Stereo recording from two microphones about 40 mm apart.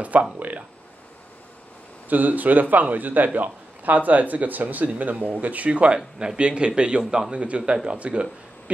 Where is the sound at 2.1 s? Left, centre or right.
Right.